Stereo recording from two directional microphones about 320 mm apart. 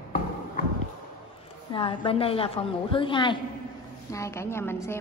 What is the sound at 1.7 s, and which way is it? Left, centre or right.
A woman's voice, centre.